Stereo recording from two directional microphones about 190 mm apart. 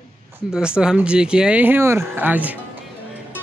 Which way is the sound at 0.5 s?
5° right (ahead or behind).